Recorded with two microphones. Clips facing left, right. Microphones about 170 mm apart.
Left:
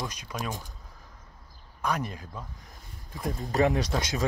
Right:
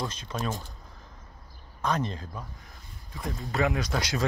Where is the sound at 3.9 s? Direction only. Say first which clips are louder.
Even; 15° left (ahead or behind).